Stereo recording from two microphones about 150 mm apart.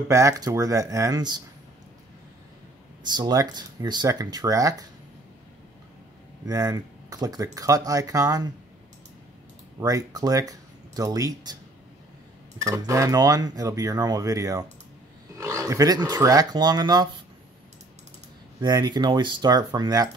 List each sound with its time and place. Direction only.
0.1 s speech: 20° right (ahead or behind)
3.0 s speech: 30° right (ahead or behind)
6.4 s speech: 25° right (ahead or behind)
9.8 s speech: 25° right (ahead or behind)
12.6 s speech: 20° right (ahead or behind)
18.6 s speech: 25° right (ahead or behind)